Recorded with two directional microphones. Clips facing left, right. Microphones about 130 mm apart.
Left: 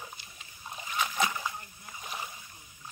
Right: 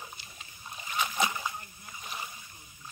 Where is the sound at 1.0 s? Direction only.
10° right (ahead or behind).